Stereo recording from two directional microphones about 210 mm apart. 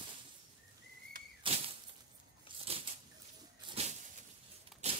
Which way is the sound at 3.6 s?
30° right (ahead or behind).